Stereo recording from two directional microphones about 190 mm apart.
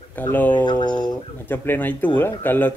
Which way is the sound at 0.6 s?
25° left (ahead or behind).